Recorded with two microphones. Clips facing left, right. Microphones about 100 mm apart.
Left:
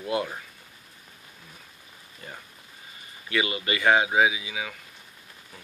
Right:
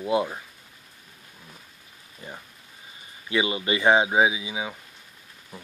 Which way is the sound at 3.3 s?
25° right (ahead or behind).